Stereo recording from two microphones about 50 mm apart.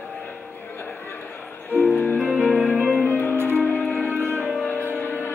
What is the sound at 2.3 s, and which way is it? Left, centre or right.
Music, left.